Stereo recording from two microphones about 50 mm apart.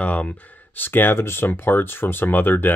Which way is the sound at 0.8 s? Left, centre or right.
Left.